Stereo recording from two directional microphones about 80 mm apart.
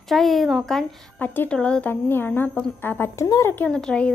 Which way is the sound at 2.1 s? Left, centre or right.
Left.